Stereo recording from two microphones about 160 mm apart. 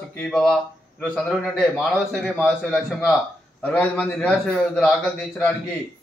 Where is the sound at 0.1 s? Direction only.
5° left (ahead or behind).